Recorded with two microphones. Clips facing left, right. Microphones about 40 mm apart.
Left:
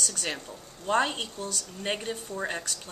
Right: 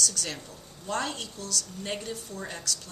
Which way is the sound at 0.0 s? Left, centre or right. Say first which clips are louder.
Even; left.